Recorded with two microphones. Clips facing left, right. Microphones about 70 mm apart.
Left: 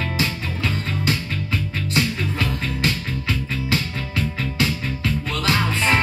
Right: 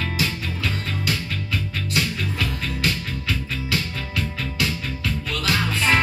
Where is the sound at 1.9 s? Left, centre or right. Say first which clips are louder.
Left 3 dB; left.